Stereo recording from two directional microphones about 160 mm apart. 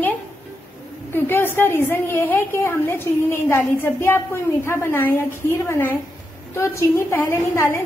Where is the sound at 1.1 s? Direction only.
15° left (ahead or behind).